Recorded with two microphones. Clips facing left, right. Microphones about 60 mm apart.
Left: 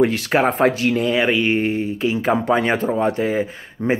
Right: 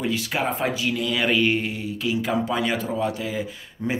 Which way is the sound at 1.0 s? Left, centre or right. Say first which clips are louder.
Left 1 dB; left.